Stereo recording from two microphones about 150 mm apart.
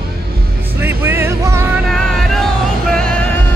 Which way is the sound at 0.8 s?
15° right (ahead or behind).